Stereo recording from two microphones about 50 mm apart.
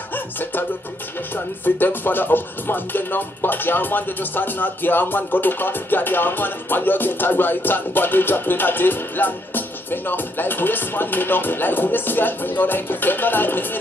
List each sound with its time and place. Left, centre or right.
0.1 s music: left
1.6 s speech: left